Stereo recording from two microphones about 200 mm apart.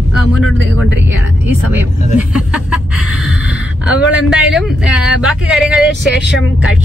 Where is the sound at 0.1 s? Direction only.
Centre (ahead or behind).